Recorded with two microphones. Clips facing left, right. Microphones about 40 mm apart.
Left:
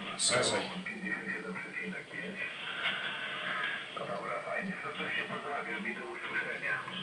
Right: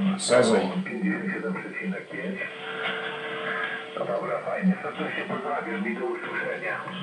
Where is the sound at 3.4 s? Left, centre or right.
Centre.